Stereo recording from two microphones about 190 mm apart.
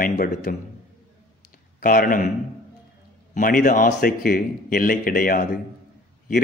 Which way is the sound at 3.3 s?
45° left (ahead or behind).